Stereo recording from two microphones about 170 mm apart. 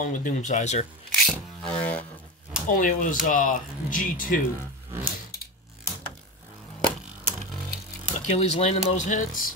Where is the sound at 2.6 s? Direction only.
50° left (ahead or behind).